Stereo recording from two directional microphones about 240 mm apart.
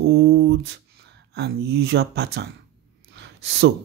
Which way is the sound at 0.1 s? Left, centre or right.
Right.